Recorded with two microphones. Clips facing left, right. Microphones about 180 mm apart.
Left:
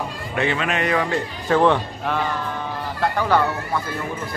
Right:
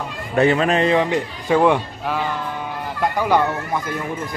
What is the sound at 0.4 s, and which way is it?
Speech, 40° right (ahead or behind).